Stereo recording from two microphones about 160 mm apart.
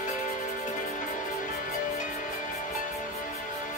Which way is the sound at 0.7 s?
55° left (ahead or behind).